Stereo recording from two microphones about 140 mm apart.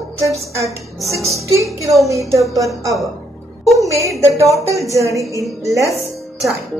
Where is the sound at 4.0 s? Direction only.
20° right (ahead or behind).